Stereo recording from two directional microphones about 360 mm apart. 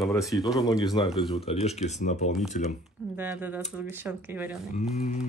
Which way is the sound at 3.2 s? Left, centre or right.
Centre.